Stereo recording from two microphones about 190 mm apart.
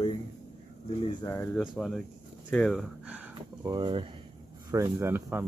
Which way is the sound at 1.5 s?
5° left (ahead or behind).